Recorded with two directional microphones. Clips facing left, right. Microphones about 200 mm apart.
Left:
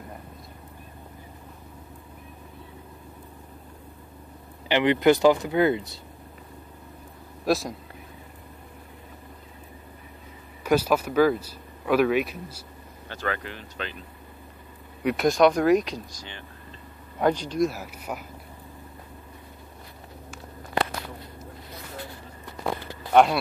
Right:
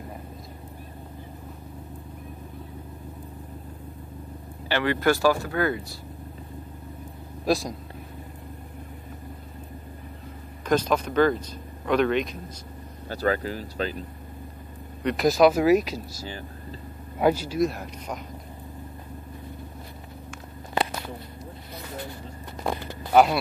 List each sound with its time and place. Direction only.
4.6 s speech: 20° left (ahead or behind)
7.4 s speech: centre (ahead or behind)
10.6 s speech: 10° left (ahead or behind)
13.1 s speech: 40° right (ahead or behind)
15.0 s speech: centre (ahead or behind)
23.1 s speech: centre (ahead or behind)